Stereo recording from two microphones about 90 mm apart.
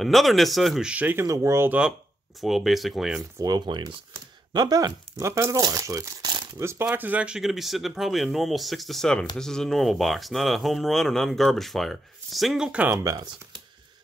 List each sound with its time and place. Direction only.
0.0 s speech: centre (ahead or behind)
0.8 s speech: 15° right (ahead or behind)
1.1 s speech: 35° right (ahead or behind)
1.7 s speech: 10° right (ahead or behind)
3.3 s speech: 45° right (ahead or behind)
5.2 s speech: 35° right (ahead or behind)
6.9 s speech: 20° right (ahead or behind)
13.0 s speech: 40° right (ahead or behind)